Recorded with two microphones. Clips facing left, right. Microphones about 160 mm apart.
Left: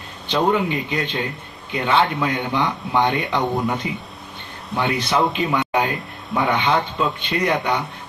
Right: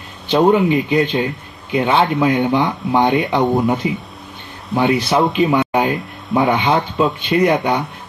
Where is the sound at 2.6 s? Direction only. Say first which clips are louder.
Right 4 dB; 25° right (ahead or behind).